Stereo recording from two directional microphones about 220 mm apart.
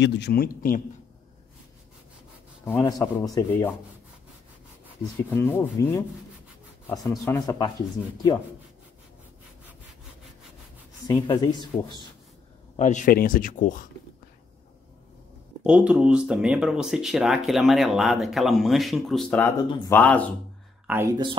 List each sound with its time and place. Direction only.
0.0 s speech: 45° left (ahead or behind)
2.6 s speech: 15° left (ahead or behind)
5.3 s speech: 10° left (ahead or behind)
11.1 s speech: 20° left (ahead or behind)
12.7 s speech: 35° left (ahead or behind)
15.6 s speech: 5° right (ahead or behind)
20.8 s speech: 10° right (ahead or behind)